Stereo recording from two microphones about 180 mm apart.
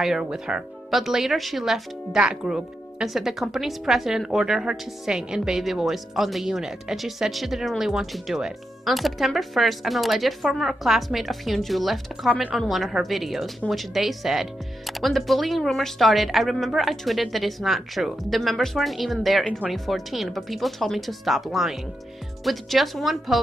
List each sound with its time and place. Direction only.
0.0 s speech: 5° right (ahead or behind)